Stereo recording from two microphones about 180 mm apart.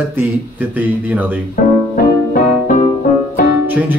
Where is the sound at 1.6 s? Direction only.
55° left (ahead or behind).